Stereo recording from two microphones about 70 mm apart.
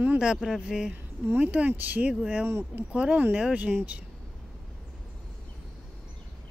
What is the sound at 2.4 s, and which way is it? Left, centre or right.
Speech, right.